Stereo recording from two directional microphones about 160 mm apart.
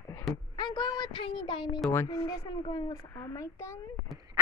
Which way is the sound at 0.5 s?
30° left (ahead or behind).